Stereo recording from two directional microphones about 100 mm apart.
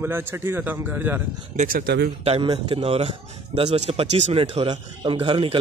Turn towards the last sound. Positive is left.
turn(degrees=-65)  # may be behind; listen again after turning